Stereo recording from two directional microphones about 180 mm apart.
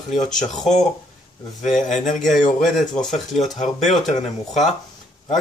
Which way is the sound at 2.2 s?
Centre (ahead or behind).